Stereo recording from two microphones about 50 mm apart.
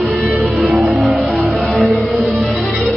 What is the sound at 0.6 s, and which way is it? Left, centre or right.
Music, centre.